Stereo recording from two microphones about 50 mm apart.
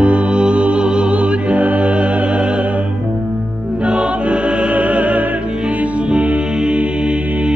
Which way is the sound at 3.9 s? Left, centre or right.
Right.